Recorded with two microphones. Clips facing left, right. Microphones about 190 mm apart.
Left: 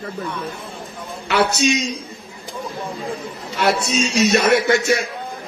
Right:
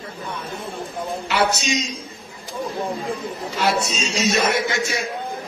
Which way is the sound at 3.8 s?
65° left (ahead or behind).